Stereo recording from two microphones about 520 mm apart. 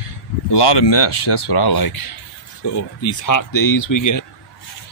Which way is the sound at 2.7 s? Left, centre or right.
Left.